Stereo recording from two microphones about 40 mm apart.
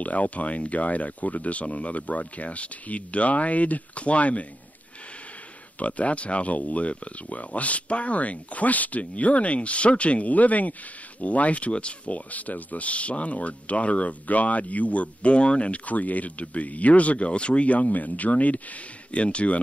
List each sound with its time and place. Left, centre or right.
0.0 s speech: left
5.8 s speech: left
12.3 s speech: left